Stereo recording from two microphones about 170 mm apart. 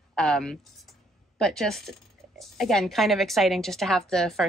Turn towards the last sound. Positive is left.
turn(degrees=0)  # may be behind; listen again after turning